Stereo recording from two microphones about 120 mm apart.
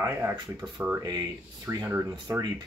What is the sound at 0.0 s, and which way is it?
Speech, 20° right (ahead or behind).